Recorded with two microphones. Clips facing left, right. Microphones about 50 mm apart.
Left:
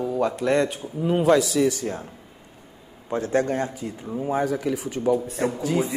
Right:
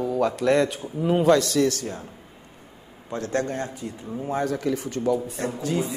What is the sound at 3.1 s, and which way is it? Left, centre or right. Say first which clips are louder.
Speech: left 4 dB; left.